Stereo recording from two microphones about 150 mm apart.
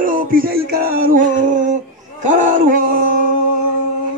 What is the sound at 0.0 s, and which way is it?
Music, 65° right (ahead or behind).